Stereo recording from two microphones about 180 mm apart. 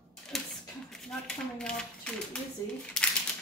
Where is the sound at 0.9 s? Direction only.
5° left (ahead or behind).